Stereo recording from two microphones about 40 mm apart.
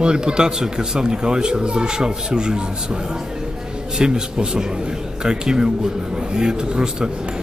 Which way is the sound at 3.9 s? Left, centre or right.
Centre.